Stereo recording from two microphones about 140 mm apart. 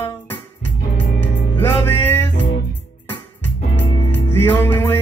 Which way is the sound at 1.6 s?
15° left (ahead or behind).